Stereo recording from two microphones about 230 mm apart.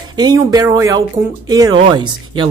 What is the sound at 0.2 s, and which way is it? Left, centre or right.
A woman's voice, centre.